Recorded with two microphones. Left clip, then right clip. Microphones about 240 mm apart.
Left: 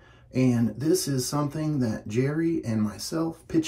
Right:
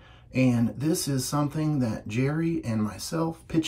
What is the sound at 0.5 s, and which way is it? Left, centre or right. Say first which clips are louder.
Speech: left 3 dB; right.